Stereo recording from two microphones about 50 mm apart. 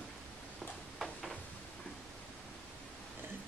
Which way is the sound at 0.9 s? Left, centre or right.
Centre.